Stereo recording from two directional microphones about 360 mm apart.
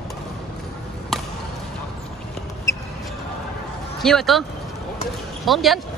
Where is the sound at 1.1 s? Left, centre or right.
Centre.